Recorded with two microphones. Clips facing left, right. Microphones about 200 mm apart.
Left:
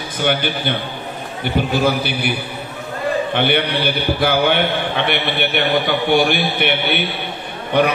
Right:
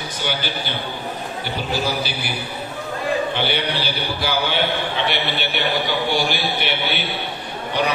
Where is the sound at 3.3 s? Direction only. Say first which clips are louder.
Left 5 dB; 55° left (ahead or behind).